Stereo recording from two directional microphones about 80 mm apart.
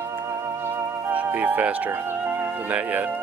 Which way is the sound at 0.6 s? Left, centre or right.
Right.